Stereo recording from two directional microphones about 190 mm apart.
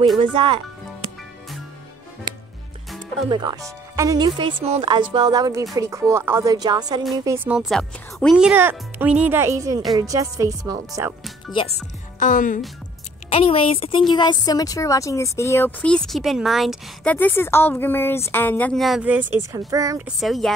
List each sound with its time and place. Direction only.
0.2 s speech: 25° right (ahead or behind)
3.3 s speech: 25° right (ahead or behind)
7.2 s speech: 10° right (ahead or behind)
11.6 s speech: 25° left (ahead or behind)
12.2 s speech: 45° left (ahead or behind)
13.3 s a woman's voice: 30° left (ahead or behind); by 20.0 s 15° right (ahead or behind)
20.1 s speech: centre (ahead or behind)